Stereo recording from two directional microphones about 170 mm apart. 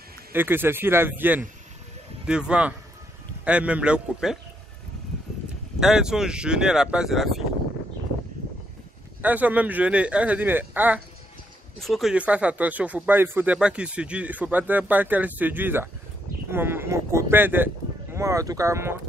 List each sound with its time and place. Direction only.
0.3 s speech: 10° right (ahead or behind)
5.8 s speech: 5° right (ahead or behind)
9.2 s speech: 10° right (ahead or behind)